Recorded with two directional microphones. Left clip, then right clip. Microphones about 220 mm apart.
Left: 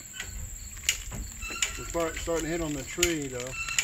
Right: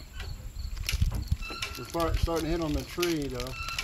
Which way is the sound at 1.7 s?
35° right (ahead or behind).